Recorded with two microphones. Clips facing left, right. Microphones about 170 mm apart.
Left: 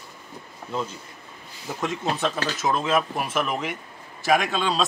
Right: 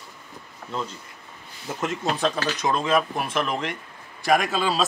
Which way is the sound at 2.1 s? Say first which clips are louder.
Right 2 dB; 5° left (ahead or behind).